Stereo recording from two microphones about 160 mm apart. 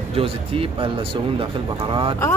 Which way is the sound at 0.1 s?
35° right (ahead or behind).